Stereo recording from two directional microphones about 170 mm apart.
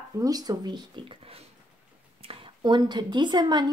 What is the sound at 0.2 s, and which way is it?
Speech, 20° right (ahead or behind).